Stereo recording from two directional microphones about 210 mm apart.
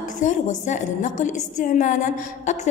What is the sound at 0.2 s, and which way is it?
A woman's voice, 35° left (ahead or behind).